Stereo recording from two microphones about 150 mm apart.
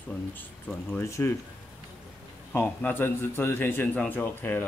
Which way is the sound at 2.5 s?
15° left (ahead or behind).